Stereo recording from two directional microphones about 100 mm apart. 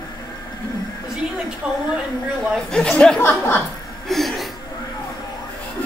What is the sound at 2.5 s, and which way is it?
Speech, 10° left (ahead or behind).